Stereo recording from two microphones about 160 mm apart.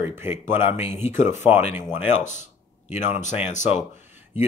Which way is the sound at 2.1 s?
50° left (ahead or behind).